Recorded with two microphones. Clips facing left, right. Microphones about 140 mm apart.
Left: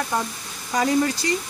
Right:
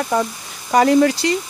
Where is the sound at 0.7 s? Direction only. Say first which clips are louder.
Right 8 dB; 75° right (ahead or behind).